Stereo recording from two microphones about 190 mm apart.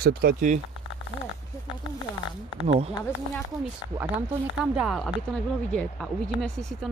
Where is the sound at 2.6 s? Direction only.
30° right (ahead or behind).